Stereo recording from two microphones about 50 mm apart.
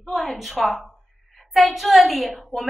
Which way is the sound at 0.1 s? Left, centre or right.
Centre.